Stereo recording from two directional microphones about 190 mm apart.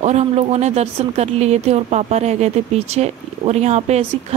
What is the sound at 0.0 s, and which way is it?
Speech, 35° right (ahead or behind).